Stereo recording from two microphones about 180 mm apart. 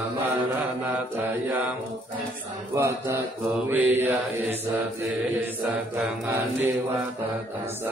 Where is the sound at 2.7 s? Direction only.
15° right (ahead or behind).